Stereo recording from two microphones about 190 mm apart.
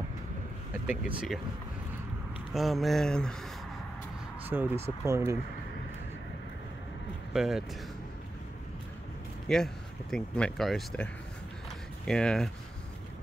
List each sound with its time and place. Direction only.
0.8 s speech: 5° right (ahead or behind)
2.5 s speech: centre (ahead or behind)
4.5 s speech: 10° right (ahead or behind)
7.3 s speech: 5° right (ahead or behind)
9.5 s speech: centre (ahead or behind)
12.1 s speech: 5° left (ahead or behind)